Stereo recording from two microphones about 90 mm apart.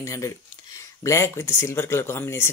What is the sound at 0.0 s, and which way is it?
Speech, 35° left (ahead or behind).